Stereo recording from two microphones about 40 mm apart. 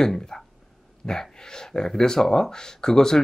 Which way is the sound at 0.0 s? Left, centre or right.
Centre.